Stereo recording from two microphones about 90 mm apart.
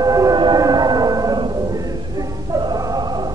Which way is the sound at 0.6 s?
45° right (ahead or behind).